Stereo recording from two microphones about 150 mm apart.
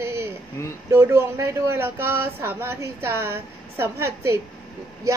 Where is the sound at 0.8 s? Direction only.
15° right (ahead or behind).